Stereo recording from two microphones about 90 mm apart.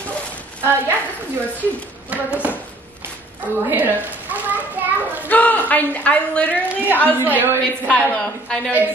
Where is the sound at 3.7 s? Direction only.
20° right (ahead or behind).